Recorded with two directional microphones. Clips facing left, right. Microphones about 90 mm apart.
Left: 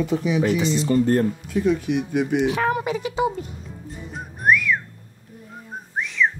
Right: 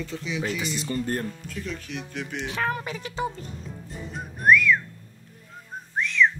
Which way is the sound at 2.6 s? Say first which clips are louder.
Left 6 dB; 25° left (ahead or behind).